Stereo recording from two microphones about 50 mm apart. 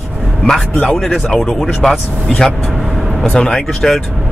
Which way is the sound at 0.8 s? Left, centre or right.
Centre.